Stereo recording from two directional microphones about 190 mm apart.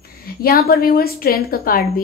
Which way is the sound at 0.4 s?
50° left (ahead or behind).